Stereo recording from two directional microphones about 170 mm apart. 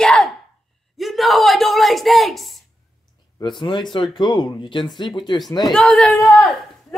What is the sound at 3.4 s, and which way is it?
Speech, 30° left (ahead or behind).